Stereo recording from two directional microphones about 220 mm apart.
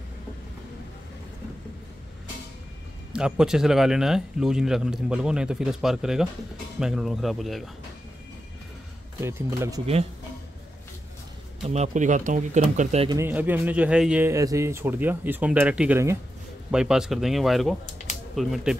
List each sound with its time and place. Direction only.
3.1 s speech: 5° right (ahead or behind)
9.2 s speech: 10° right (ahead or behind)
11.6 s speech: 30° right (ahead or behind)
13.1 s speech: 10° right (ahead or behind)